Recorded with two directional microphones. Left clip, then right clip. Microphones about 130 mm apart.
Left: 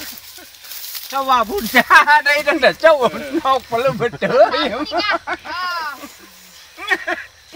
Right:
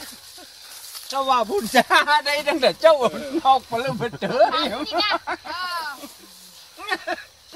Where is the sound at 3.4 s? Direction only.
35° left (ahead or behind).